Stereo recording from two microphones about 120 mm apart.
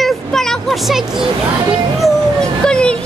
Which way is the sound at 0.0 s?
Centre (ahead or behind).